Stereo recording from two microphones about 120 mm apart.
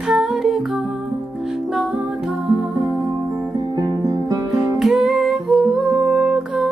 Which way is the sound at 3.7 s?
25° right (ahead or behind).